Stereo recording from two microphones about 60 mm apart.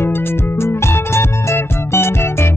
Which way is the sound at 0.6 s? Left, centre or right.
Left.